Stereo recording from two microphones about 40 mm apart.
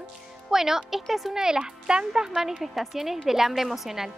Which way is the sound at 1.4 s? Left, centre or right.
Centre.